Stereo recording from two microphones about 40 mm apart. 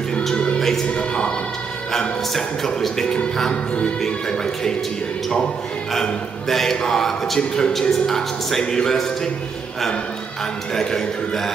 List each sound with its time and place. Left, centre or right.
0.6 s music: centre
0.8 s speech: left
1.9 s music: centre
6.5 s music: centre
10.7 s music: centre